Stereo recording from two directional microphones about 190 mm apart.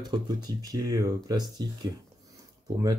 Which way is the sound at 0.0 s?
20° right (ahead or behind).